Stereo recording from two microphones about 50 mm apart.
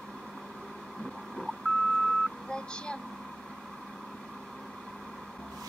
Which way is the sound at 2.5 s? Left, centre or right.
Centre.